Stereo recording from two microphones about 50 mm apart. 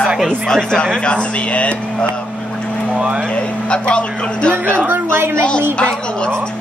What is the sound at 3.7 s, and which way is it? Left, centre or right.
Speech, left.